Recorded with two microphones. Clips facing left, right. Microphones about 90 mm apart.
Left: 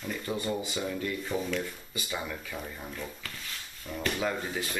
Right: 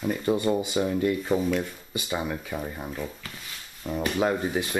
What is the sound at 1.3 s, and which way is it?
Rub, 5° right (ahead or behind).